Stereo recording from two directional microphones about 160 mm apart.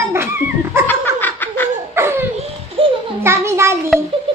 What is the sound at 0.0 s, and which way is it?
Laughter, 15° right (ahead or behind).